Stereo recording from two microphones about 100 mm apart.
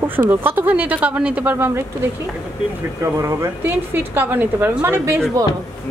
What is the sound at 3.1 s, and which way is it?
Speech, 35° right (ahead or behind).